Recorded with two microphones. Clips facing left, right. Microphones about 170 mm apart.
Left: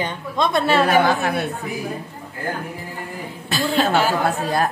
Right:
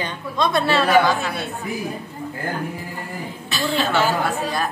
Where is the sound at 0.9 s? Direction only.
55° left (ahead or behind).